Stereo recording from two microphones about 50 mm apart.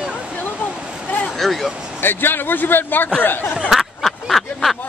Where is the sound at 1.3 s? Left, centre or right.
Centre.